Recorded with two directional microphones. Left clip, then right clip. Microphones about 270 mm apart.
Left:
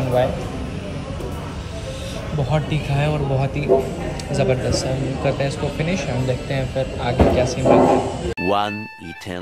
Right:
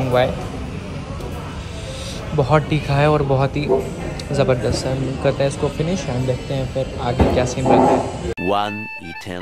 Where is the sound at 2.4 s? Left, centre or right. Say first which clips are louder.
Right 6 dB; right.